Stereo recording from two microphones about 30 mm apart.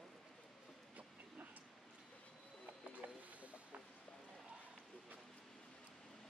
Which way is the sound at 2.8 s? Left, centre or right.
Right.